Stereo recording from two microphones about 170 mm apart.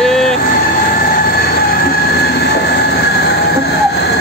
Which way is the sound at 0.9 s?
65° left (ahead or behind).